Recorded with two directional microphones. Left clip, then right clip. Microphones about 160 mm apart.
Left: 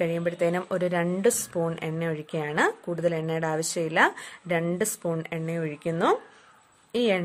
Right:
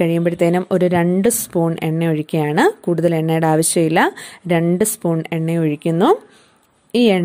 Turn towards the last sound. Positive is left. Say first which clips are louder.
# right 9 dB
turn(degrees=-40)  # may be behind; listen again after turning